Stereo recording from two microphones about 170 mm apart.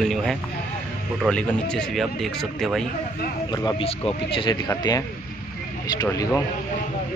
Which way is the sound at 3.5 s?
20° left (ahead or behind).